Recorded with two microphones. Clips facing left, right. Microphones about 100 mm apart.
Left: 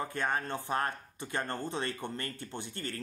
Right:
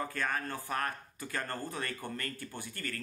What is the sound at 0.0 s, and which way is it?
Speech, 25° left (ahead or behind).